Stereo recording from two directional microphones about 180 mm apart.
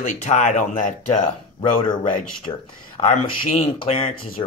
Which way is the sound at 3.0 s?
35° left (ahead or behind).